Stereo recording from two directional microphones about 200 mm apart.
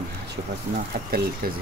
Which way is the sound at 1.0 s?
50° right (ahead or behind).